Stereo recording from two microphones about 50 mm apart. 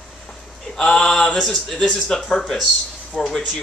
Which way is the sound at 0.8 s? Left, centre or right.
Centre.